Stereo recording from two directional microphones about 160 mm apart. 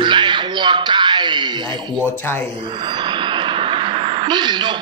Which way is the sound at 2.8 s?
30° right (ahead or behind).